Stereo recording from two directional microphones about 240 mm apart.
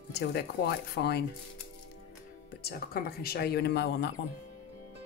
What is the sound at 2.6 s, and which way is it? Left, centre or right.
Speech, left.